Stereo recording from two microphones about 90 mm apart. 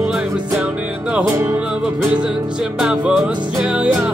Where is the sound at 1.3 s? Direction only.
20° right (ahead or behind).